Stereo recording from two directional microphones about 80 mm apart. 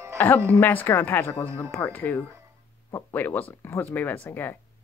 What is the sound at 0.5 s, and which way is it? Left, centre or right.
Speech, left.